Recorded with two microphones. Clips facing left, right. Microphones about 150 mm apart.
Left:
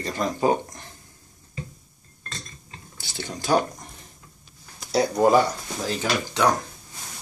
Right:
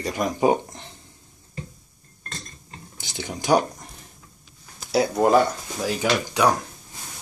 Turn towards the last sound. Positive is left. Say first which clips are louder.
# right 2 dB
turn(degrees=-10)  # may be behind; listen again after turning